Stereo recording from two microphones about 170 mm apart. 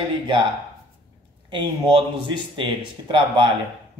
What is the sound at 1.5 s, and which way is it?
Speech, 30° right (ahead or behind).